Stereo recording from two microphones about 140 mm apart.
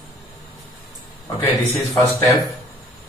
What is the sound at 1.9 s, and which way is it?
Speech, 25° left (ahead or behind).